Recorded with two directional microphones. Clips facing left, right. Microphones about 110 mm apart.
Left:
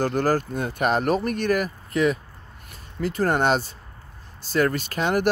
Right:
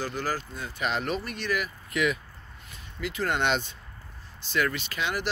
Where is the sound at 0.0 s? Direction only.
50° left (ahead or behind).